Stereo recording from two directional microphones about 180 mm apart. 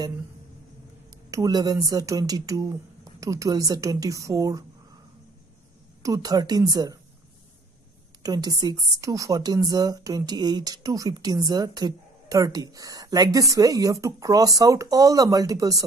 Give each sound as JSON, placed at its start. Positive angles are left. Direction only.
{"t": 1.3, "sound": "a woman's voice", "side_deg": -20}
{"t": 6.0, "sound": "a woman's voice", "side_deg": -20}
{"t": 8.2, "sound": "a woman's voice", "side_deg": -20}